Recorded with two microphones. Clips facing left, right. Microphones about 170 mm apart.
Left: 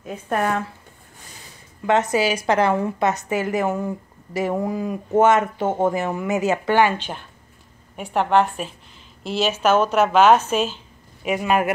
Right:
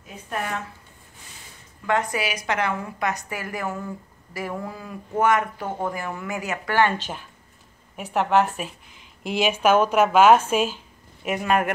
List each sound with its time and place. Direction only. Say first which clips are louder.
0.3 s speech: left 7 dB; 55° left (ahead or behind)
1.9 s a woman's voice: left 6 dB; 25° left (ahead or behind)
7.9 s a woman's voice: left 2 dB; centre (ahead or behind)
11.2 s speech: left 2 dB; centre (ahead or behind)